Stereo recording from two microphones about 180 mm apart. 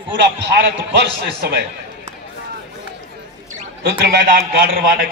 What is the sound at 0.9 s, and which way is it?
Speech, 65° right (ahead or behind).